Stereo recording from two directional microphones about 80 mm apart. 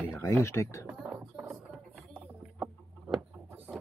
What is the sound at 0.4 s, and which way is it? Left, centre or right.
Speech, left.